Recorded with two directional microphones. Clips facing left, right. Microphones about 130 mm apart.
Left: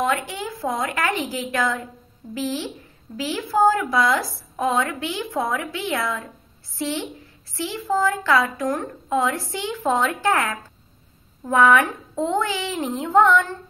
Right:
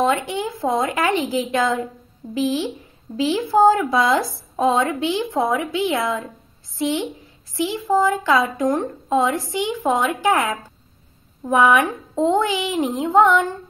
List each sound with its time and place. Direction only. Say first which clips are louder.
0.0 s a woman's voice: right 4 dB; 20° right (ahead or behind)